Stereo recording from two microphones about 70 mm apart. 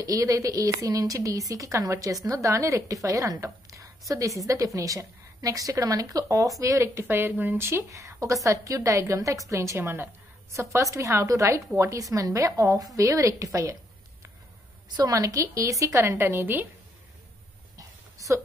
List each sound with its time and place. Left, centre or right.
0.0 s a woman's voice: right
7.1 s a woman's voice: right
15.0 s a woman's voice: right
16.2 s a woman's voice: right
17.7 s a sound: right